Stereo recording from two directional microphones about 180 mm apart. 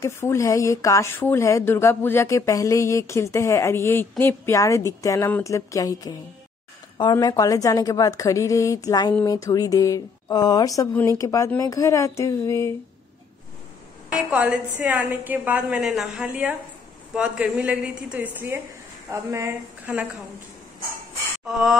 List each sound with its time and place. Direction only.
0.0 s speech: 15° left (ahead or behind)
14.1 s a woman's voice: 10° right (ahead or behind)
21.5 s a sound: centre (ahead or behind)